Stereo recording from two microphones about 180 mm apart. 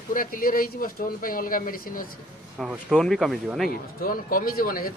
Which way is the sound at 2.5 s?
5° right (ahead or behind).